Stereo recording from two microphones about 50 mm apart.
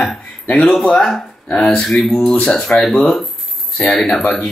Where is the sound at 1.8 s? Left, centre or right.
Centre.